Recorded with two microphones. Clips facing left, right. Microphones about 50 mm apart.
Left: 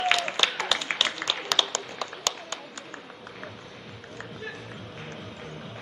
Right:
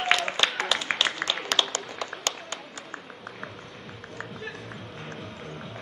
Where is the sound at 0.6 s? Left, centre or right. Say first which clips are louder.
Right 1 dB; right.